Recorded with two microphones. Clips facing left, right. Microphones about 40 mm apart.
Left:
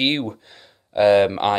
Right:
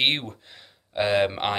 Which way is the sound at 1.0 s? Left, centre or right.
Centre.